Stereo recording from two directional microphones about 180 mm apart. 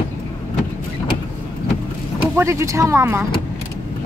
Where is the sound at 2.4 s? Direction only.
15° right (ahead or behind).